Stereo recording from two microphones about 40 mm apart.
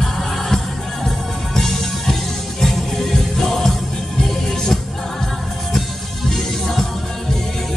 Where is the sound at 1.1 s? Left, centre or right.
Centre.